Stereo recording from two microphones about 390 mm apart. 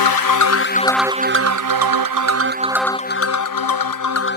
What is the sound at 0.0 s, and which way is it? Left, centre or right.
Music, left.